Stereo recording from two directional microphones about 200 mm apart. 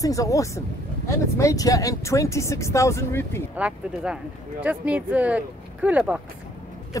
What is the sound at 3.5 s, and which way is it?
Speech, 5° right (ahead or behind).